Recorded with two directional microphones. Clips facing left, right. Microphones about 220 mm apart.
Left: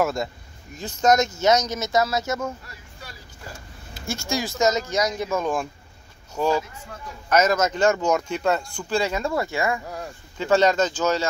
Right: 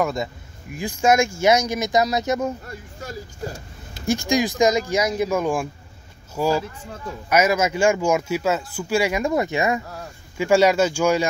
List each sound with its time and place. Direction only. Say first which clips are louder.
0.0 s speech: even; centre (ahead or behind)
0.7 s speech: right 1 dB; 10° right (ahead or behind)
2.6 s speech: right 8 dB; 45° right (ahead or behind)
4.0 s speech: right 7 dB; 15° right (ahead or behind)